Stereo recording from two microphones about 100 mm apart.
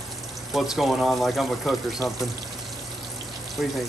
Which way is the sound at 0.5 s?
Centre (ahead or behind).